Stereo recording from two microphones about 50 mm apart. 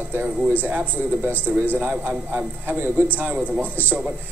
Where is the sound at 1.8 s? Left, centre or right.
Right.